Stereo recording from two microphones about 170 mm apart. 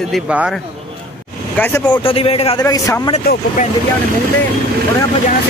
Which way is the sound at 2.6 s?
20° left (ahead or behind).